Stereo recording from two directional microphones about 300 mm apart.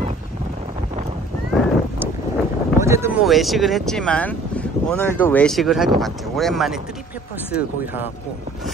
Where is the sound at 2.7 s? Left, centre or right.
Centre.